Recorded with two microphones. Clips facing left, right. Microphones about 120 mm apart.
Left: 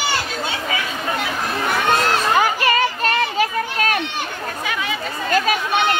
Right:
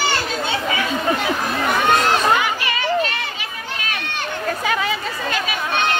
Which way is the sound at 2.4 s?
45° left (ahead or behind).